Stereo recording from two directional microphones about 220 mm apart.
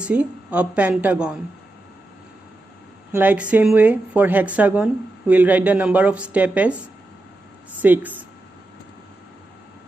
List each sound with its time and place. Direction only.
0.0 s a woman's voice: 5° right (ahead or behind)
3.1 s a woman's voice: 10° right (ahead or behind)
7.8 s a woman's voice: 10° right (ahead or behind)